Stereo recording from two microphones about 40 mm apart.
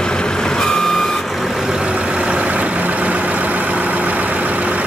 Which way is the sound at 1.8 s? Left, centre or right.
Right.